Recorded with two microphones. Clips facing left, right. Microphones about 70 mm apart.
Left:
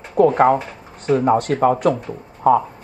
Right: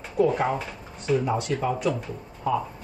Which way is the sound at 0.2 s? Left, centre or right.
Left.